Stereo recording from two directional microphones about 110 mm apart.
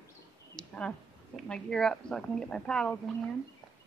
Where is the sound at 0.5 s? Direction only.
10° left (ahead or behind).